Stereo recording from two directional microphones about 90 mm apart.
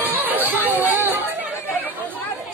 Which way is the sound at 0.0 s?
20° right (ahead or behind).